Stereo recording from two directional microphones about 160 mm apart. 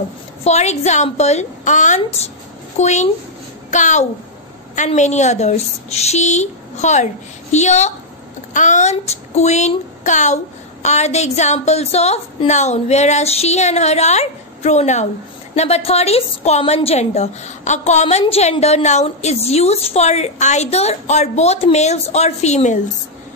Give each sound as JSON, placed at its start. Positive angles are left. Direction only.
{"t": 0.4, "sound": "a woman's voice", "side_deg": 45}